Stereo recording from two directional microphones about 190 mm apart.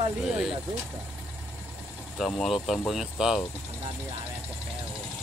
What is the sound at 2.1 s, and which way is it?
Speech, centre (ahead or behind).